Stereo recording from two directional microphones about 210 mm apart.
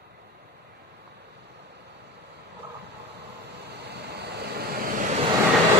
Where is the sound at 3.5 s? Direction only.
50° right (ahead or behind).